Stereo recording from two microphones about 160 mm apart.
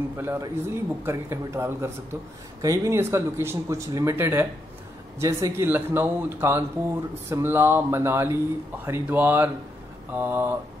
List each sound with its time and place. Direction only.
0.2 s speech: 15° right (ahead or behind)